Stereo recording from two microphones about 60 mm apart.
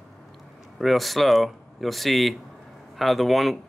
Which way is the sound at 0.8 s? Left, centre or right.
Centre.